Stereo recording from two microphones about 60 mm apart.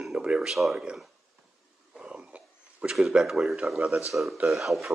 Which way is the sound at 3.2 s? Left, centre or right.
Centre.